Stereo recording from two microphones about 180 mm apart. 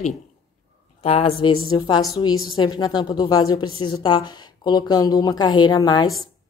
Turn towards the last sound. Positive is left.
turn(degrees=25)  # may be behind; listen again after turning